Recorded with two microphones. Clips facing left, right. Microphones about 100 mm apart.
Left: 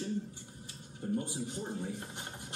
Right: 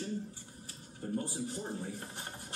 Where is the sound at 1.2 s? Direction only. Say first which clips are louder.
Even; 20° left (ahead or behind).